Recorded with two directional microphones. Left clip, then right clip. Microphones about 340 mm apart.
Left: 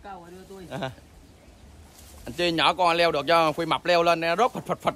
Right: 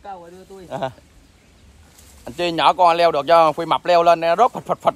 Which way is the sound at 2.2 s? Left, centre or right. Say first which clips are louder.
Right 6 dB; centre.